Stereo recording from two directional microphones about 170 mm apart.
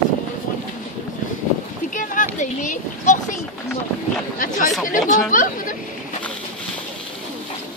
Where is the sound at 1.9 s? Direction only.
50° left (ahead or behind).